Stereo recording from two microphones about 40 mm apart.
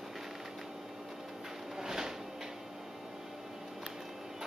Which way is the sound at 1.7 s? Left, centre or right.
Centre.